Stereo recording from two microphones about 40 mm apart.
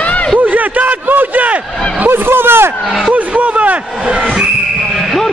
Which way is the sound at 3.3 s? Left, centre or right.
Right.